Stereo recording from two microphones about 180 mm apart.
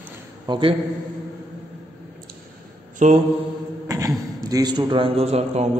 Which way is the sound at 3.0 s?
40° right (ahead or behind).